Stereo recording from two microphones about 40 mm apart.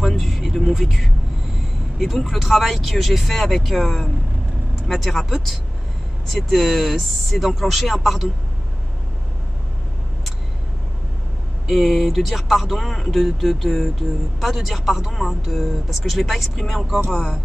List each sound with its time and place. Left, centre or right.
0.0 s speech: centre
11.6 s speech: centre